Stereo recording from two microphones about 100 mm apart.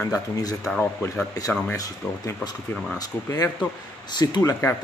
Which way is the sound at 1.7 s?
35° left (ahead or behind).